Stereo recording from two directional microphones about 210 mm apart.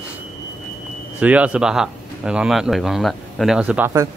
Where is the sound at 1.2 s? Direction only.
5° right (ahead or behind).